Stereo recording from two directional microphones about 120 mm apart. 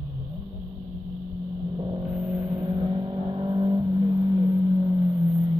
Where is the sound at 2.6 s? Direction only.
45° right (ahead or behind).